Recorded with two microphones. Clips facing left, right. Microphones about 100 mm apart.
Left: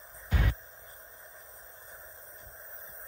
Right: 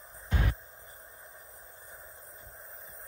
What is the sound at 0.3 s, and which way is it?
Music, 25° right (ahead or behind).